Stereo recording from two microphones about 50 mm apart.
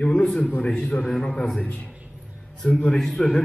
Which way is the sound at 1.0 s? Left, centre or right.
Centre.